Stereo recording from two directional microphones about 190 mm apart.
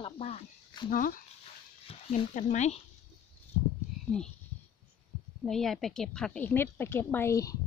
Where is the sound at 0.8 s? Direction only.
45° left (ahead or behind).